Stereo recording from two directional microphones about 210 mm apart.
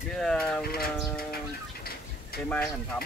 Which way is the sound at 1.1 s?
45° left (ahead or behind).